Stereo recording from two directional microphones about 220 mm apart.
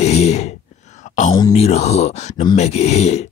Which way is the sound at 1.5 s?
30° left (ahead or behind).